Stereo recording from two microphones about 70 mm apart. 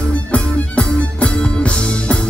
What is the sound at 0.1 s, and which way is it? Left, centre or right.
Music, centre.